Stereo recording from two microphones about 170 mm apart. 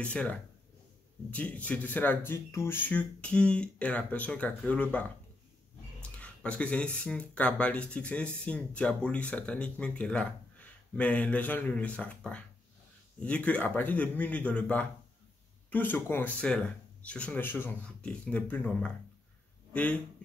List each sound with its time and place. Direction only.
0.0 s speech: 5° left (ahead or behind)
6.1 s a sound: 5° left (ahead or behind)
7.0 s speech: 10° left (ahead or behind)